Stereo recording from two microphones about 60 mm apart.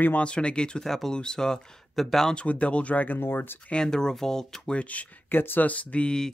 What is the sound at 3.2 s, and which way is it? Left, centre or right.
Speech, left.